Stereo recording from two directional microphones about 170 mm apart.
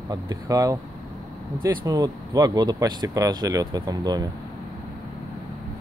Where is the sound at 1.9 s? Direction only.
20° right (ahead or behind).